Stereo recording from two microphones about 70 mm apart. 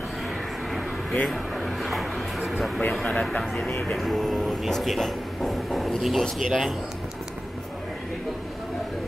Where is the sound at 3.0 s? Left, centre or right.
Centre.